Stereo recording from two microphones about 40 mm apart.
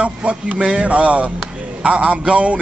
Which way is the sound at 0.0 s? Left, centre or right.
Right.